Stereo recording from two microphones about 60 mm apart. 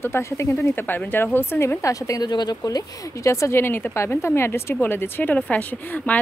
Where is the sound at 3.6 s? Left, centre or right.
Left.